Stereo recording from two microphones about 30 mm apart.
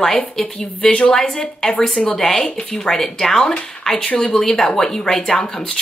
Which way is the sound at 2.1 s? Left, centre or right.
Centre.